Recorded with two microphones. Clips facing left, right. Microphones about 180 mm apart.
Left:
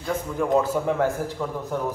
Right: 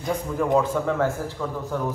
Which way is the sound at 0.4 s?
5° left (ahead or behind).